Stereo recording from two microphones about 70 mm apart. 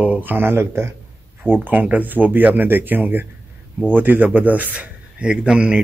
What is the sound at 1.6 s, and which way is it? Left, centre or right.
A man's voice, right.